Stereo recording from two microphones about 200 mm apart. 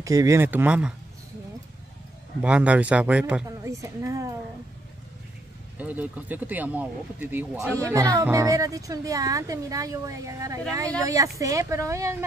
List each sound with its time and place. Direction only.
0.0 s speech: 15° right (ahead or behind)
2.4 s speech: 5° right (ahead or behind)
3.4 s a sound: 15° right (ahead or behind)
5.8 s speech: 10° right (ahead or behind)